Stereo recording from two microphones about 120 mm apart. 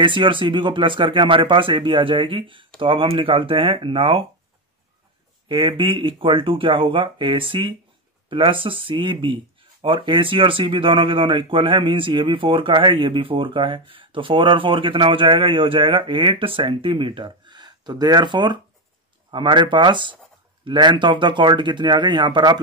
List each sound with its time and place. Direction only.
0.0 s speech: 45° right (ahead or behind)
5.5 s speech: 45° right (ahead or behind)